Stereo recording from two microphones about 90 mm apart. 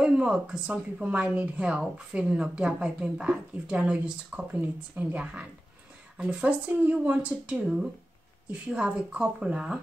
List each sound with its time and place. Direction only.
0.0 s speech: 10° right (ahead or behind)